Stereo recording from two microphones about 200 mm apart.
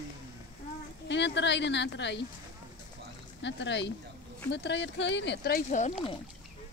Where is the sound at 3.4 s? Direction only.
60° left (ahead or behind); by 5.9 s 40° left (ahead or behind).